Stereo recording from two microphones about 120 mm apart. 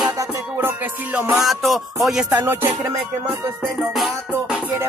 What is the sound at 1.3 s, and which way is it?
Music, centre (ahead or behind).